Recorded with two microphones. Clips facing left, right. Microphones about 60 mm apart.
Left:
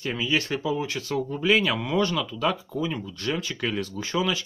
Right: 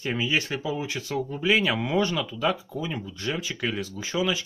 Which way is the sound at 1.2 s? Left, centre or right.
Centre.